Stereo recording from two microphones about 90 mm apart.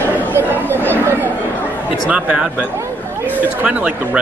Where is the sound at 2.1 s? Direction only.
10° right (ahead or behind).